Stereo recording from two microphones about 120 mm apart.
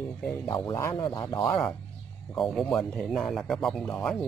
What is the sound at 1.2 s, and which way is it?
Speech, 25° left (ahead or behind).